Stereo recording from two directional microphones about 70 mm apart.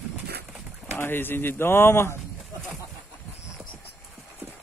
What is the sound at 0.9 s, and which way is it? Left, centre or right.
Speech, left.